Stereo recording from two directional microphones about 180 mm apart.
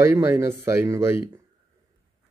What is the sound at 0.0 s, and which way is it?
Speech, 15° right (ahead or behind).